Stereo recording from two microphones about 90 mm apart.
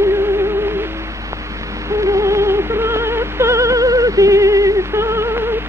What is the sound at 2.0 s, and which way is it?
Music, 35° right (ahead or behind).